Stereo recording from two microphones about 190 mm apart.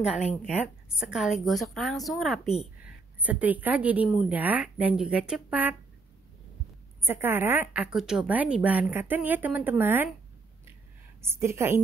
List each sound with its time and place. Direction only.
0.0 s a woman's voice: 5° right (ahead or behind)
7.1 s a woman's voice: 10° right (ahead or behind)
11.1 s a woman's voice: 15° right (ahead or behind)